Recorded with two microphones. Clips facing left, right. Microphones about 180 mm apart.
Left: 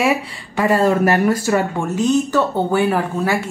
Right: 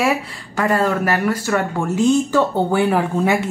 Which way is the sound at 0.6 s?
20° left (ahead or behind).